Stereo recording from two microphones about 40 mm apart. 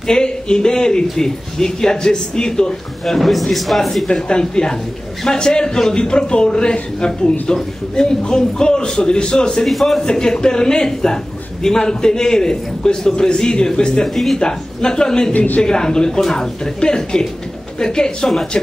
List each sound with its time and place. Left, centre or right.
0.0 s a man's voice: centre
3.2 s speech: centre
4.1 s speech: left
9.7 s speech: centre
10.0 s a man's voice: centre
14.0 s speech: centre
14.4 s speech: centre
15.3 s a man's voice: left
15.6 s a man's voice: centre